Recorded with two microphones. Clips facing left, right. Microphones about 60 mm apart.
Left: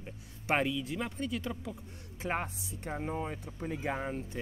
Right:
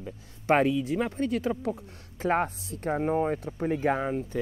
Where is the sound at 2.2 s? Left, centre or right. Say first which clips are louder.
Right 9 dB; right.